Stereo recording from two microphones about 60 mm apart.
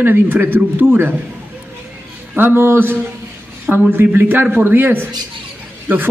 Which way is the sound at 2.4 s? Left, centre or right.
Right.